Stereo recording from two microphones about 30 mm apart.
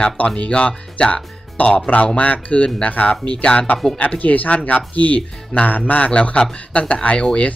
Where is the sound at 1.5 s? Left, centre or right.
Left.